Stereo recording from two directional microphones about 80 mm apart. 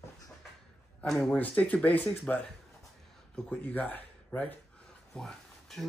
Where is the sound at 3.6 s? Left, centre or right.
Left; by 5.9 s centre.